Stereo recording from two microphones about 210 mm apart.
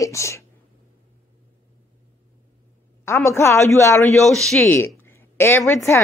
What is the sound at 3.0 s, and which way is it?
A woman's voice, 15° left (ahead or behind).